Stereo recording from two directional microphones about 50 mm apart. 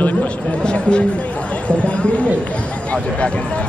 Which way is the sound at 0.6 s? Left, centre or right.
Centre.